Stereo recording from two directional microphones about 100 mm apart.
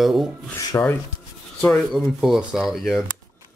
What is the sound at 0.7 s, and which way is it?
Speech, 25° left (ahead or behind).